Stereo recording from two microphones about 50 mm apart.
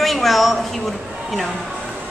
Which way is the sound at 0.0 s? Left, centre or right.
Centre.